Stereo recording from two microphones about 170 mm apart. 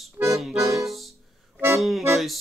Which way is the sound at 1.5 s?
15° right (ahead or behind).